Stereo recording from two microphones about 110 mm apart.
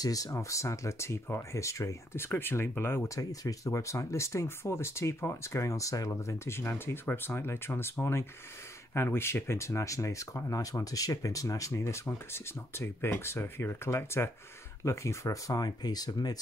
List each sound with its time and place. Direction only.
0.0 s speech: 30° left (ahead or behind)